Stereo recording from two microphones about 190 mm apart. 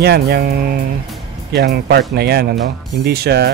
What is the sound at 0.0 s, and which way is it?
Speech, 55° right (ahead or behind).